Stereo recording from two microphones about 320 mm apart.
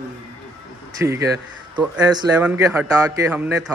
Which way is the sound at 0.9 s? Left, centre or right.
Centre.